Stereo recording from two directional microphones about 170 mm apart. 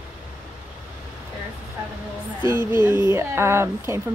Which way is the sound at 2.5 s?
15° right (ahead or behind).